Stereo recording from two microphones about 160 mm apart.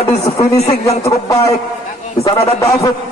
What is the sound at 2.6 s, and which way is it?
Speech, 20° left (ahead or behind).